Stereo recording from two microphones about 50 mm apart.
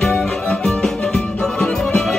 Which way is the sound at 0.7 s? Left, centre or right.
Centre.